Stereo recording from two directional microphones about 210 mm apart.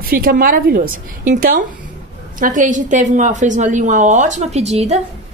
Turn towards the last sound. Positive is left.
turn(degrees=-30)  # may be behind; listen again after turning